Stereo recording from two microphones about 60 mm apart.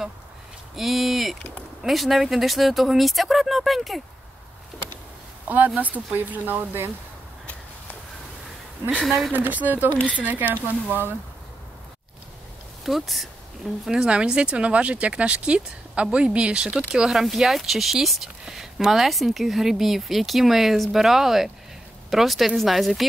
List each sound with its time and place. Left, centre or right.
0.7 s speech: centre
5.8 s speech: right
9.0 s speech: centre
9.3 s speech: right
12.8 s speech: centre
13.8 s speech: centre